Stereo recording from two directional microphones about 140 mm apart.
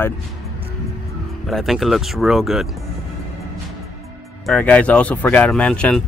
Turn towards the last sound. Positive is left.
turn(degrees=5)  # may be behind; listen again after turning